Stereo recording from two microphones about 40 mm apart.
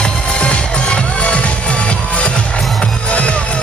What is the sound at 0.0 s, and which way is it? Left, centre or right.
Music, left.